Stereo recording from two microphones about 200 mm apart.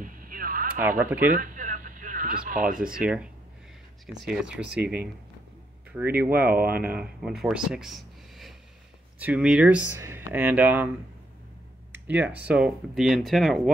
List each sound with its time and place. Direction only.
0.0 s radio: 45° right (ahead or behind)
0.7 s speech: 10° right (ahead or behind)
1.3 s radio: 40° right (ahead or behind)
2.7 s speech: 45° right (ahead or behind)
3.0 s speech: 5° right (ahead or behind)
4.6 s speech: 55° right (ahead or behind)
5.9 s speech: 10° right (ahead or behind)
11.9 s a sound: 10° right (ahead or behind)
12.4 s speech: 5° right (ahead or behind)